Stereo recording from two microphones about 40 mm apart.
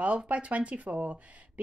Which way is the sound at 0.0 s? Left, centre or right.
Right.